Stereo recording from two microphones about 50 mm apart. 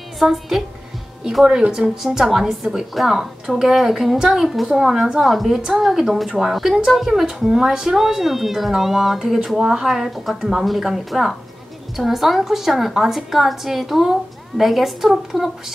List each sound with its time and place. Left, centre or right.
0.2 s speech: centre
1.4 s a woman's voice: centre
5.6 s a woman's voice: centre